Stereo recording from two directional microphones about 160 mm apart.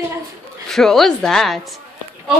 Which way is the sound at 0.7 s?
Centre (ahead or behind).